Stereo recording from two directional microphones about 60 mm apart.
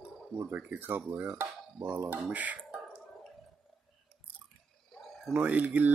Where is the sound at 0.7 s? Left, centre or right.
Right.